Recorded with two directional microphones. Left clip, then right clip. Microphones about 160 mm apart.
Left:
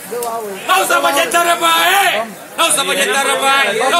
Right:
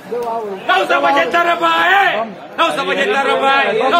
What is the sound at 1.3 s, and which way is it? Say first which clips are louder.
Speech: left 1 dB; centre (ahead or behind).